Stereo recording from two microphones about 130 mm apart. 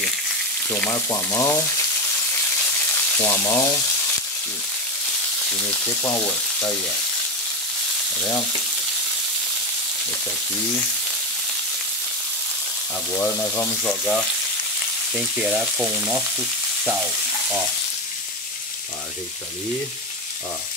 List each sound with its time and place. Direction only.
0.7 s frying: 20° left (ahead or behind)
3.2 s frying: 20° left (ahead or behind)
13.1 s frying: 15° left (ahead or behind)
15.1 s frying: 5° right (ahead or behind)